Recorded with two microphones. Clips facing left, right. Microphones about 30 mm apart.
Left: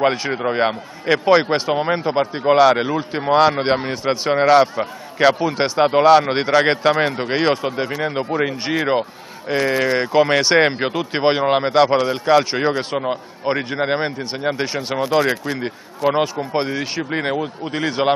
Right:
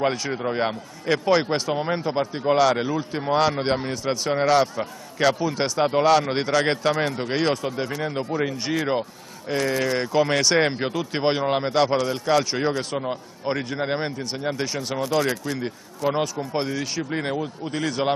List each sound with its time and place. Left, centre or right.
0.0 s a man's voice: left